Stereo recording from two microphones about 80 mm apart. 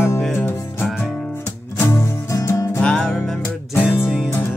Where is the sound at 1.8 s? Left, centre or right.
Left.